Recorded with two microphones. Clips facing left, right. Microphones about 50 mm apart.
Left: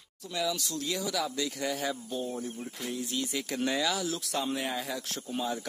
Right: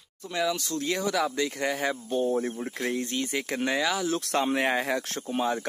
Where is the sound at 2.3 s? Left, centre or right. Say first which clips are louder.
Right 9 dB; right.